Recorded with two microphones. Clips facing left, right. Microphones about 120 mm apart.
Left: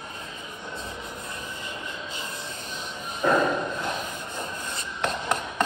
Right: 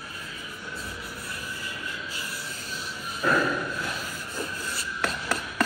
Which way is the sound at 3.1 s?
20° left (ahead or behind).